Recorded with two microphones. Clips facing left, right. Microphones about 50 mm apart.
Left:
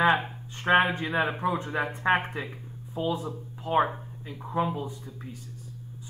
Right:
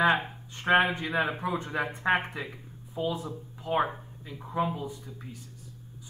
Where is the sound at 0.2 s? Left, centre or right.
Centre.